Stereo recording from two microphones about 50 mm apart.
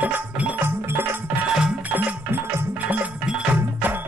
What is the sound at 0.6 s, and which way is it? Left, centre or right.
Music, right.